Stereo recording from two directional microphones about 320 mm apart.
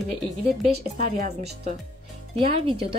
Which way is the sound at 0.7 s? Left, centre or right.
Right.